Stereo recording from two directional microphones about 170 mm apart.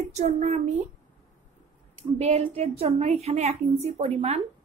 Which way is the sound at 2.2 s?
40° right (ahead or behind).